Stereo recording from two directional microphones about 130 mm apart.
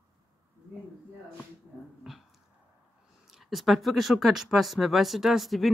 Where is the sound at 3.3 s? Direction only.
Centre (ahead or behind).